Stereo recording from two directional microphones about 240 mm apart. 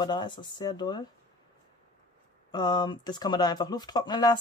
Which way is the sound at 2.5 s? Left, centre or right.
Centre.